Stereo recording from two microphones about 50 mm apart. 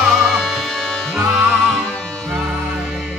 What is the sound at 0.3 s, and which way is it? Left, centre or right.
Music, centre.